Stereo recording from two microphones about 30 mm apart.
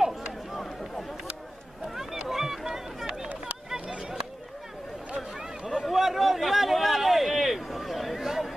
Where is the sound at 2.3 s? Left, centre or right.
Centre.